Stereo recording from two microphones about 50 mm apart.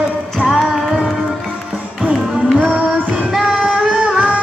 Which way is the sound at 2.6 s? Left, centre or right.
Centre.